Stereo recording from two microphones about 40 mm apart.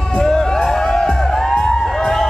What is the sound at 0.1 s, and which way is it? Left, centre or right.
Music, centre.